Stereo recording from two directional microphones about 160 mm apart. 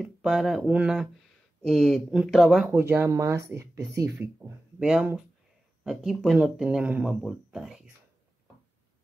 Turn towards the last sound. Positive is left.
turn(degrees=-5)  # may be behind; listen again after turning